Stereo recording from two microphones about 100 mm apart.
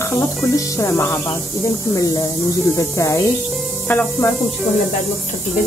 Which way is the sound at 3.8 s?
20° left (ahead or behind).